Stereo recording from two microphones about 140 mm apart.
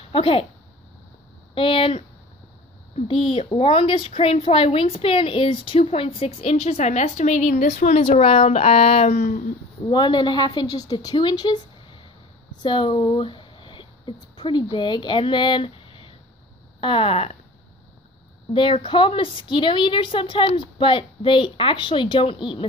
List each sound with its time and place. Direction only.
0.1 s a woman's voice: 40° left (ahead or behind)
1.5 s a woman's voice: 40° left (ahead or behind); by 9.4 s 60° left (ahead or behind)
9.8 s a woman's voice: 35° left (ahead or behind)
18.5 s a woman's voice: 35° left (ahead or behind)